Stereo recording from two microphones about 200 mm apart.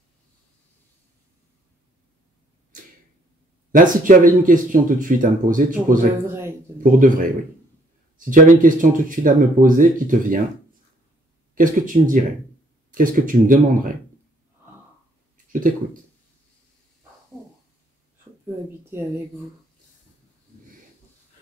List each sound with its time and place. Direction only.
3.7 s speech: 40° right (ahead or behind)
6.2 s speech: 10° right (ahead or behind)
6.8 s speech: 45° right (ahead or behind)
11.5 s speech: 40° right (ahead or behind)
15.5 s speech: 40° right (ahead or behind)